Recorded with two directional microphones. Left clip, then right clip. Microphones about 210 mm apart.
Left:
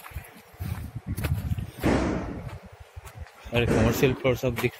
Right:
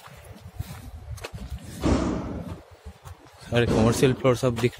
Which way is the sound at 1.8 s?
55° right (ahead or behind).